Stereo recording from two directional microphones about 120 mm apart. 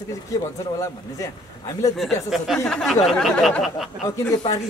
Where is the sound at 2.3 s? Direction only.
5° right (ahead or behind).